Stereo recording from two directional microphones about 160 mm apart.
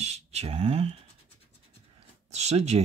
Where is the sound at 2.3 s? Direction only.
45° right (ahead or behind).